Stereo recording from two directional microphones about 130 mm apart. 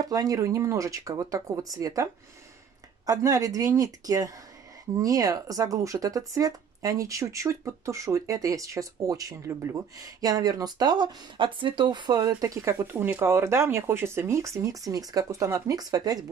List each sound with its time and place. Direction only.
0.0 s speech: 30° right (ahead or behind)
3.1 s speech: 30° right (ahead or behind)